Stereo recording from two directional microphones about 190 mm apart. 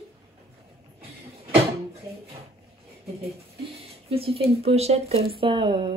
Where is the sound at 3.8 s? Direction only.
30° right (ahead or behind).